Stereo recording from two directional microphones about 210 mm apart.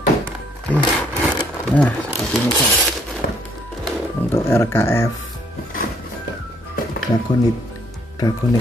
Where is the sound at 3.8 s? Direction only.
10° left (ahead or behind).